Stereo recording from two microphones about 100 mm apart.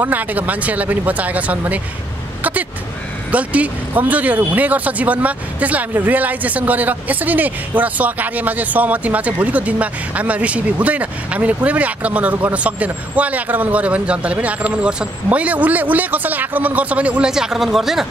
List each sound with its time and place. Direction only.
0.0 s speech: 15° right (ahead or behind)
3.3 s speech: 15° right (ahead or behind)